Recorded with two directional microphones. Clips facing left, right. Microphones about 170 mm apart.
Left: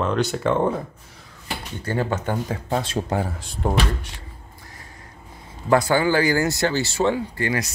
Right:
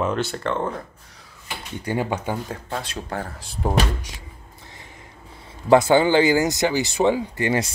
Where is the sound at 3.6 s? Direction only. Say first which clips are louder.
Even; 5° right (ahead or behind).